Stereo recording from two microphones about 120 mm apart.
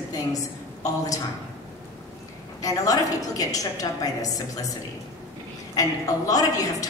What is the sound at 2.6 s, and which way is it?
Speech, 30° left (ahead or behind).